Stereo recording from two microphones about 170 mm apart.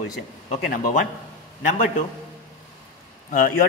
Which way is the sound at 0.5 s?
55° left (ahead or behind).